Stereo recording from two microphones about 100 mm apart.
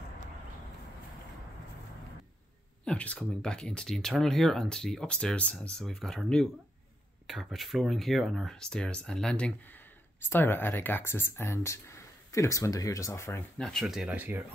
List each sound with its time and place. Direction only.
2.8 s speech: 10° left (ahead or behind)
10.3 s speech: 20° left (ahead or behind)
13.6 s speech: 5° left (ahead or behind)
14.0 s speech: 15° right (ahead or behind)